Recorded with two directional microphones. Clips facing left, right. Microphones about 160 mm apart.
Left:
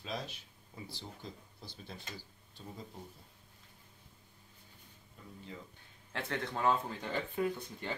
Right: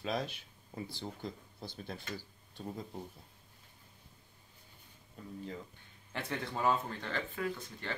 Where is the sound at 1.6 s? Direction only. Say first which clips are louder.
Right 5 dB; 55° right (ahead or behind).